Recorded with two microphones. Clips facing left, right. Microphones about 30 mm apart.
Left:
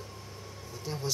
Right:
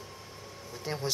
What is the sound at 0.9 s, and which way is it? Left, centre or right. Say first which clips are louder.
Speech: right 2 dB; right.